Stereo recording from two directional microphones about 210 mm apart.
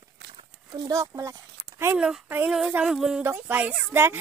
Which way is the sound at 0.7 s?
15° right (ahead or behind).